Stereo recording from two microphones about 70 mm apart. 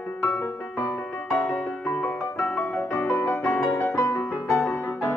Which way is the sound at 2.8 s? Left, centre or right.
Left.